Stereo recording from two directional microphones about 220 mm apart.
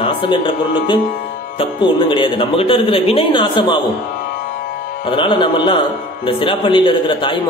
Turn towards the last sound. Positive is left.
turn(degrees=20)  # may be behind; listen again after turning